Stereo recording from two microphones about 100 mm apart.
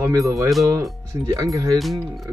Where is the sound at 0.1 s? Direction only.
35° right (ahead or behind).